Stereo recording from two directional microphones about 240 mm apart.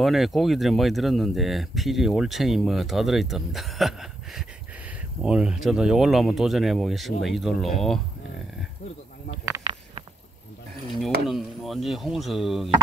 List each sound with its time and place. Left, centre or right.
0.0 s speech: centre
9.5 s a sound: right
11.2 s speech: centre